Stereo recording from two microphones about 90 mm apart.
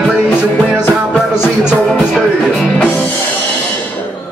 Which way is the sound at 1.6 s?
10° right (ahead or behind).